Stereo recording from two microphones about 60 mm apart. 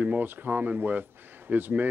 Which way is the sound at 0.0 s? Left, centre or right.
Right.